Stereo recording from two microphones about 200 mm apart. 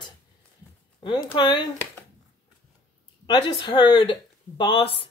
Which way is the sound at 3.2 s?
20° left (ahead or behind).